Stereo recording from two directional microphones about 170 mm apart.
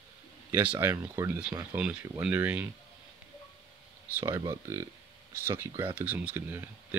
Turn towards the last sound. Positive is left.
turn(degrees=-10)  # may be behind; listen again after turning